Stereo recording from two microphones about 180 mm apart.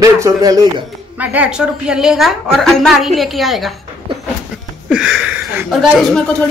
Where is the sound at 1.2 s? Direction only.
10° right (ahead or behind).